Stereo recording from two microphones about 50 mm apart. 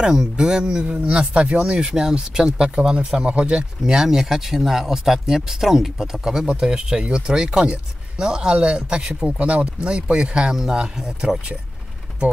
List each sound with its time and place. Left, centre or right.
0.0 s speech: centre